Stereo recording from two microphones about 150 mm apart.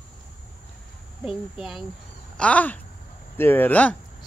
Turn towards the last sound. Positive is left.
turn(degrees=10)  # may be behind; listen again after turning